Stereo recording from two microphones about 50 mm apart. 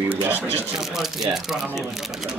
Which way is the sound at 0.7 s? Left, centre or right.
Centre.